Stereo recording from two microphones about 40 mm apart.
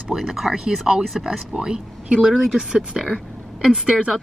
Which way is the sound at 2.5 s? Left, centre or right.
Centre.